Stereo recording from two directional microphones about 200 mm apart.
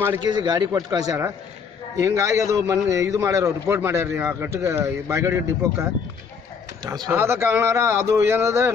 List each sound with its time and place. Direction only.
0.0 s a man's voice: 15° right (ahead or behind)